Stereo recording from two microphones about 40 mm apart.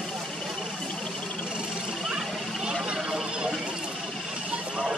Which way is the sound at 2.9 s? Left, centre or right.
Centre.